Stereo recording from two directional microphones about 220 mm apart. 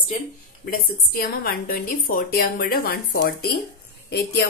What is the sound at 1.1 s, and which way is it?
A woman's voice, 40° left (ahead or behind).